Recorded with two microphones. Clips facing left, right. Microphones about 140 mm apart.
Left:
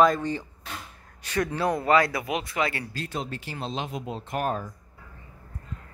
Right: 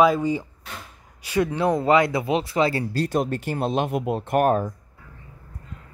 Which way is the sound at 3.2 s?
50° right (ahead or behind).